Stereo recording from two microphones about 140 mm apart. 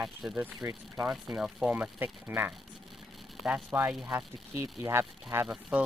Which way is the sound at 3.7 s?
15° right (ahead or behind).